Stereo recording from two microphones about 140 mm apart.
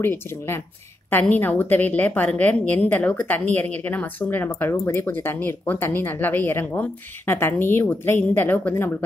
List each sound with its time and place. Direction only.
0.0 s a woman's voice: 15° left (ahead or behind)